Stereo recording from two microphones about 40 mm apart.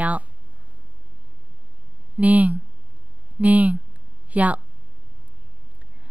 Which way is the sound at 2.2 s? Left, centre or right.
Right.